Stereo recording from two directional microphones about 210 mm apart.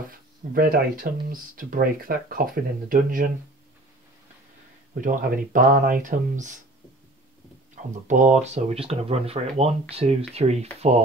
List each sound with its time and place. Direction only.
0.5 s speech: 45° right (ahead or behind)
5.0 s speech: 40° right (ahead or behind)
7.7 s speech: 35° right (ahead or behind)